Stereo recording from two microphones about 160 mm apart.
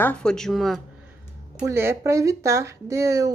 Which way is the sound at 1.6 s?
15° right (ahead or behind).